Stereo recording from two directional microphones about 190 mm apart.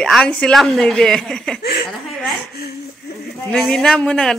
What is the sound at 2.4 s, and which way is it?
Speech, 55° left (ahead or behind).